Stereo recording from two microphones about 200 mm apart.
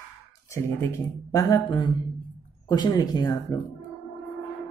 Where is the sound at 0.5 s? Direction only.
15° left (ahead or behind).